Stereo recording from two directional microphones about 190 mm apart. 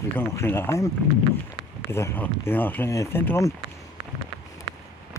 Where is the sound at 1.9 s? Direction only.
10° left (ahead or behind).